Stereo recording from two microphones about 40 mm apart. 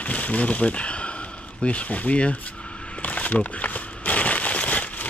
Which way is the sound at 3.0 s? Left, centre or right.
Left.